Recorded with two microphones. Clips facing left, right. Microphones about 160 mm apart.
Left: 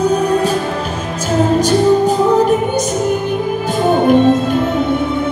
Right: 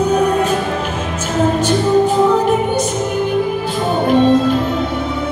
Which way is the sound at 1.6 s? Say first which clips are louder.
Left 2 dB; 40° left (ahead or behind).